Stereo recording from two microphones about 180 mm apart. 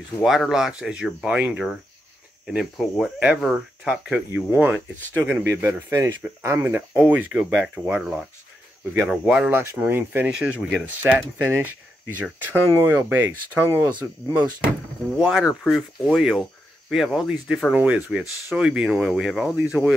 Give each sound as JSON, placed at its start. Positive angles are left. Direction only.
{"t": 0.2, "sound": "speech", "side_deg": 0}
{"t": 12.7, "sound": "speech", "side_deg": -10}